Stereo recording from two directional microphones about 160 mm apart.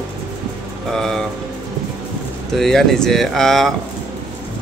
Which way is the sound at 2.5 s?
Centre (ahead or behind).